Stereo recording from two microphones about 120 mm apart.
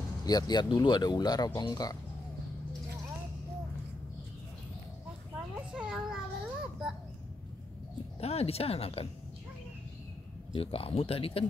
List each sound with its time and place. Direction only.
0.2 s speech: 35° left (ahead or behind)
5.7 s a sound: 5° right (ahead or behind)
8.2 s speech: 55° left (ahead or behind)
10.5 s speech: 50° left (ahead or behind)